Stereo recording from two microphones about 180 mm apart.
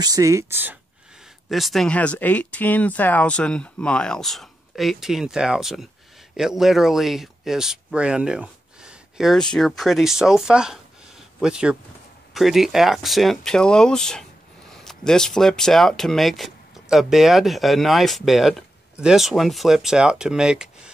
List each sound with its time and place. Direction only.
0.0 s speech: 20° right (ahead or behind)
1.5 s speech: centre (ahead or behind)